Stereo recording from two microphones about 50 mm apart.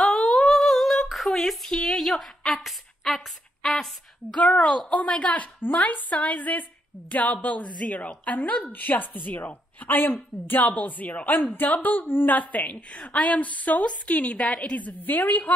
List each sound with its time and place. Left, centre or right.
0.0 s humming: centre
4.3 s a woman's voice: left
12.9 s a woman's voice: centre
13.2 s a woman's voice: left